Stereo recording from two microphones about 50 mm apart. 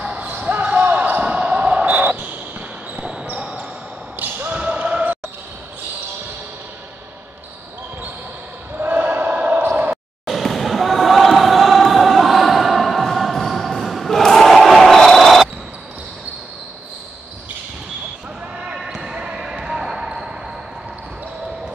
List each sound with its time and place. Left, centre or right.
0.0 s basketball bounce: right
3.0 s basketball bounce: right
4.2 s a sound: right
4.6 s basketball bounce: right
8.7 s basketball bounce: right
9.6 s a sound: right
10.2 s basketball bounce: centre
18.8 s basketball bounce: centre